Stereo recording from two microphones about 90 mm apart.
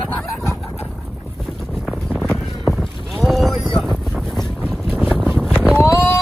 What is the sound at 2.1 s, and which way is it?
Boat, centre (ahead or behind).